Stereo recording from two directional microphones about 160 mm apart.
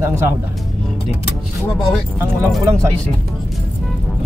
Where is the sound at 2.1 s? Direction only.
15° right (ahead or behind).